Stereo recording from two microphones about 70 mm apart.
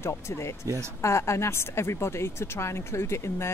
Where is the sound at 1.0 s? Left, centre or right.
Left.